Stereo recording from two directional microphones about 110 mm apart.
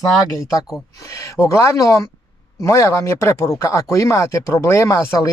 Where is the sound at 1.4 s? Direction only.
30° left (ahead or behind).